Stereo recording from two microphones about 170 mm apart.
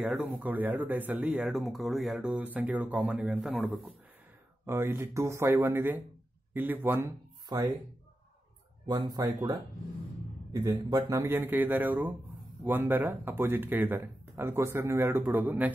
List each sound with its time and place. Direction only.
0.0 s speech: 5° right (ahead or behind)
8.8 s speech: 25° right (ahead or behind)